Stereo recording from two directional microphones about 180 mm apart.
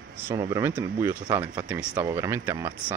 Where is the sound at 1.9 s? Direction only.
20° right (ahead or behind).